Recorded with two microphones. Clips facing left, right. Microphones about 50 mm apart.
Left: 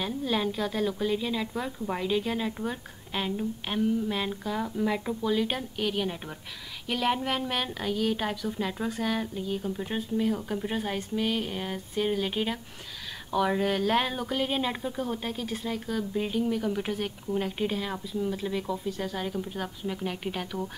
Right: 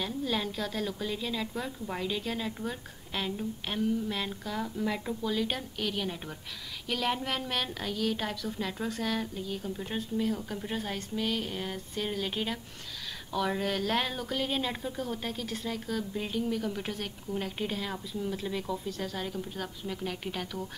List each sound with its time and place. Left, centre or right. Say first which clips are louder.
0.0 s speech: left 3 dB; centre